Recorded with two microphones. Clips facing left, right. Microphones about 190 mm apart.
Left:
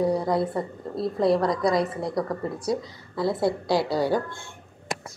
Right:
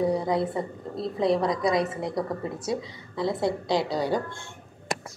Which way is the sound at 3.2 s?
5° left (ahead or behind).